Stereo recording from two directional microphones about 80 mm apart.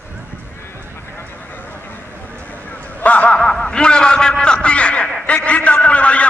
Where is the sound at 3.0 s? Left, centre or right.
Centre.